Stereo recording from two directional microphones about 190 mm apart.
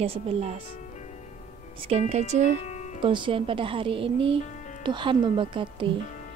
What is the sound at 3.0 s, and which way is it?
Speech, 25° right (ahead or behind).